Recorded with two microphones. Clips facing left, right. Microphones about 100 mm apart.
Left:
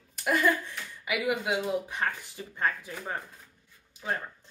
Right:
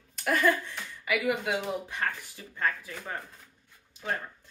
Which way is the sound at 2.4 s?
30° left (ahead or behind).